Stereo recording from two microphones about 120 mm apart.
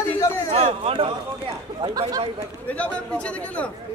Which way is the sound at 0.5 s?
65° right (ahead or behind).